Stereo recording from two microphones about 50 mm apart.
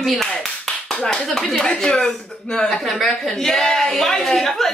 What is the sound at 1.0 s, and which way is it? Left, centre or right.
Speech, centre.